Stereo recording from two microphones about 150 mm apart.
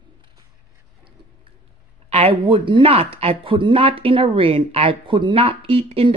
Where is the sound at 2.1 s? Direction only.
40° right (ahead or behind).